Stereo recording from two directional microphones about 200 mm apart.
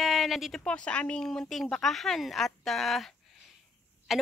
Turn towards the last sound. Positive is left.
turn(degrees=0)  # may be behind; listen again after turning